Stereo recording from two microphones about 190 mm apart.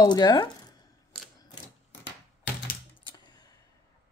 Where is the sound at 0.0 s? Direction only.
20° left (ahead or behind).